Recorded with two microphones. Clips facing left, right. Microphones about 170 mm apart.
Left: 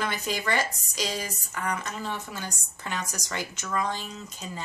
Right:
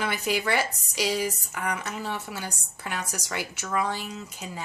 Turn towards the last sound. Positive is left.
turn(degrees=-10)  # may be behind; listen again after turning